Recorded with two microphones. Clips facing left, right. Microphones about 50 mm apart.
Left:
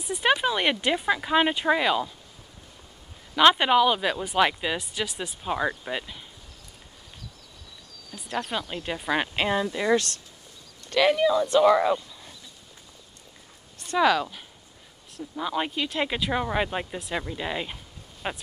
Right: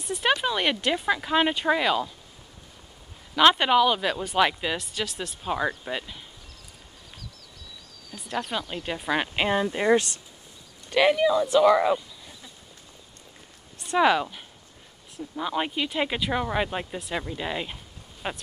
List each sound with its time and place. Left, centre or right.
0.0 s speech: centre
3.3 s speech: centre
8.1 s speech: centre
9.7 s speech: right
11.1 s speech: centre
13.8 s speech: centre